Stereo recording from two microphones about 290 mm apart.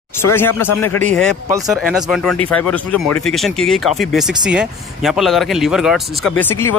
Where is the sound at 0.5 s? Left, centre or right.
Centre.